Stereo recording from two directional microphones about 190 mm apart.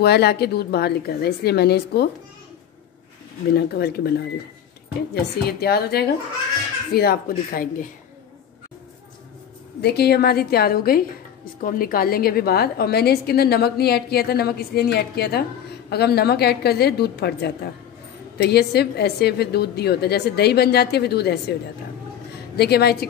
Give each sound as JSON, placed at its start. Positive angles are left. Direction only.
{"t": 0.0, "sound": "a woman's voice", "side_deg": 60}
{"t": 3.5, "sound": "a woman's voice", "side_deg": 55}
{"t": 5.1, "sound": "a woman's voice", "side_deg": 55}
{"t": 9.8, "sound": "a woman's voice", "side_deg": 60}
{"t": 22.6, "sound": "a woman's voice", "side_deg": 60}